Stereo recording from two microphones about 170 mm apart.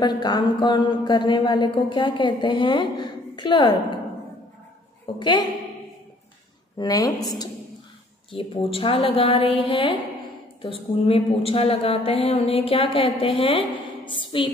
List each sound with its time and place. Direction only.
0.0 s a woman's voice: 25° left (ahead or behind)
5.2 s a woman's voice: 25° left (ahead or behind)
6.8 s a woman's voice: 20° left (ahead or behind)
8.3 s a woman's voice: 35° left (ahead or behind)